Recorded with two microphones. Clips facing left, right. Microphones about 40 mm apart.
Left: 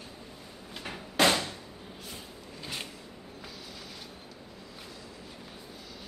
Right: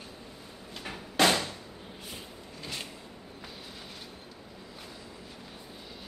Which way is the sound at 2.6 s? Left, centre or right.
Centre.